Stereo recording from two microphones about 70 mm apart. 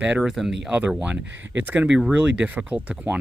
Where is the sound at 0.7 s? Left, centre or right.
Centre.